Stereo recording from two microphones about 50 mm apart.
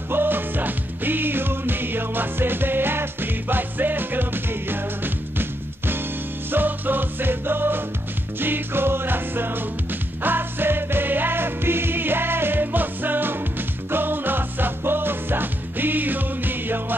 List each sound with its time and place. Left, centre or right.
0.1 s music: right